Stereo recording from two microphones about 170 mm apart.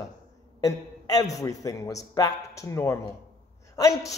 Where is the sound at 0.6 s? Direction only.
20° left (ahead or behind).